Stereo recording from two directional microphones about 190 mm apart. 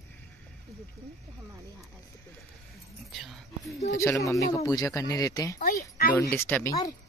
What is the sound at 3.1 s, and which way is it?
Speech, centre (ahead or behind).